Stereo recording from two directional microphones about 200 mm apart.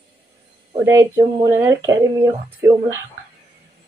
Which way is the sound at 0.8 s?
15° right (ahead or behind).